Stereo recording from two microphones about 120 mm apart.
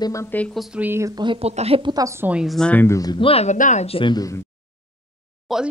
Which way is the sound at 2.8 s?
25° left (ahead or behind).